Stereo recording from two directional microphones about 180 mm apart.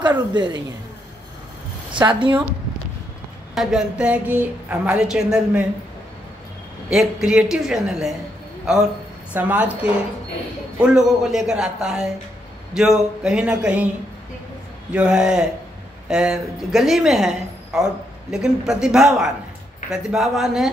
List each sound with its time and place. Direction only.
0.3 s speech: 25° right (ahead or behind)
2.0 s speech: 30° right (ahead or behind)
3.5 s a woman's voice: 5° right (ahead or behind)
6.9 s speech: 5° right (ahead or behind)
9.3 s a woman's voice: 10° right (ahead or behind)
14.9 s speech: 5° right (ahead or behind)